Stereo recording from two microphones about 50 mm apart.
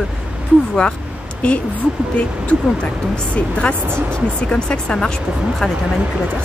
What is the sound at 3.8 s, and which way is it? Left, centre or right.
Speech, right.